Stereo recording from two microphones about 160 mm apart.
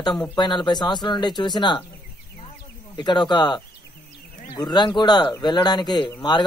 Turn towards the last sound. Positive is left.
turn(degrees=25)  # may be behind; listen again after turning